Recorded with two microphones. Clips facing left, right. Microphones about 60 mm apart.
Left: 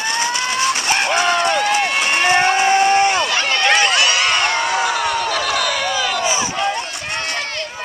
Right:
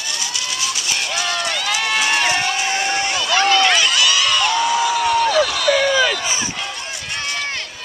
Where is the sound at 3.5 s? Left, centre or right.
Left.